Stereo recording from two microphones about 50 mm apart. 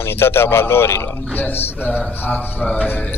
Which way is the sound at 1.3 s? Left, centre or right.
Left.